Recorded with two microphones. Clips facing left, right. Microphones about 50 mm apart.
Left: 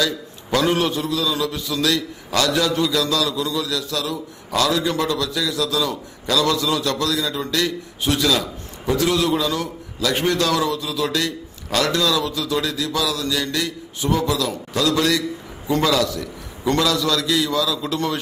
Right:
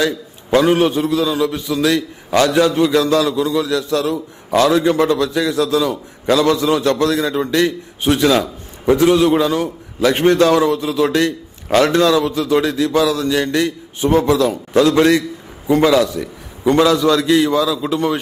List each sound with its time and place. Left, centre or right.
0.0 s a man's voice: right
17.8 s a man's voice: centre